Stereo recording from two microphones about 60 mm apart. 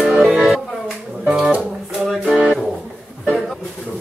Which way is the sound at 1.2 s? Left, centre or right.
Centre.